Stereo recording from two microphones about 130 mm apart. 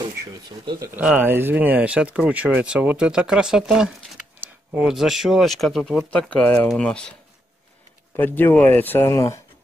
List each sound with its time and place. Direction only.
0.2 s speech: 25° right (ahead or behind); by 6.0 s centre (ahead or behind)
6.0 s speech: 10° left (ahead or behind)
8.2 s speech: 15° left (ahead or behind)